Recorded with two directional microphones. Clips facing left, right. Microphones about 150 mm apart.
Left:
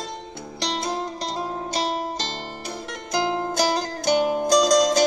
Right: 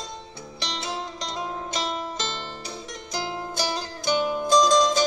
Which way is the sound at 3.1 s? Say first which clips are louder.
Left 8 dB; 50° left (ahead or behind).